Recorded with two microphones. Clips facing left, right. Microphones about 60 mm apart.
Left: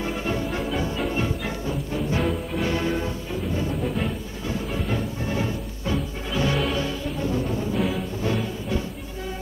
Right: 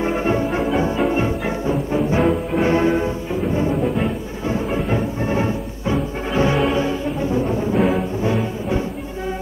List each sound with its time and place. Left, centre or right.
0.0 s music: right
3.8 s music: centre
4.9 s music: right